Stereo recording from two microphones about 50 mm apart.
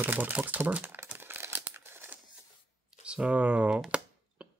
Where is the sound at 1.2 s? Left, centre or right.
Right.